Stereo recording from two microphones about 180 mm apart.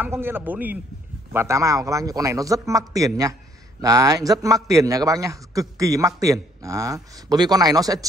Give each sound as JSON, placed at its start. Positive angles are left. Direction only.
{"t": 0.0, "sound": "a man's voice", "side_deg": -10}